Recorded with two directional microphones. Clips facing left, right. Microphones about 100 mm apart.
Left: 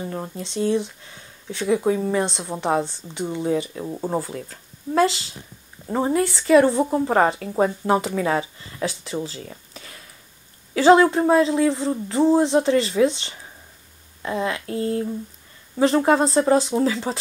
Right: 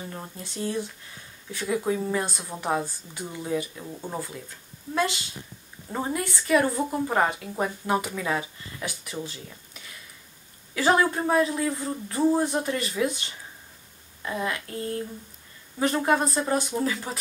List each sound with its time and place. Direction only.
0.1 s speech: 25° left (ahead or behind)
3.7 s speech: 35° left (ahead or behind)
15.8 s speech: 30° left (ahead or behind)